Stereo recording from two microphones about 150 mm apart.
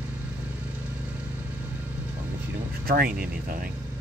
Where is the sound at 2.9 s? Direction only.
90° right.